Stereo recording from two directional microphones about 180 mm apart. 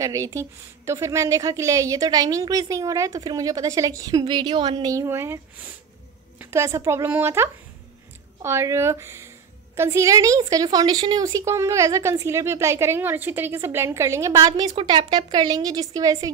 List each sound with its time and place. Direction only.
0.0 s a woman's voice: 15° right (ahead or behind)